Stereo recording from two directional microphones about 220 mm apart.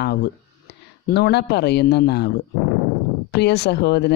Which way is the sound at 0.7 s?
50° left (ahead or behind).